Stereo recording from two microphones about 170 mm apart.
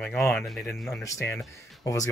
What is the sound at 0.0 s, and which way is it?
Speech, 5° left (ahead or behind).